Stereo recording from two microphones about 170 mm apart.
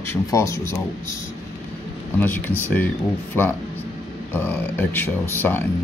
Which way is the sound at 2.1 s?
10° left (ahead or behind).